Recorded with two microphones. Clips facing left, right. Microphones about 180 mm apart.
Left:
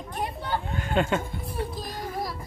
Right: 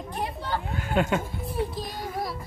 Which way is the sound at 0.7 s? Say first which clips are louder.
Even; 5° right (ahead or behind).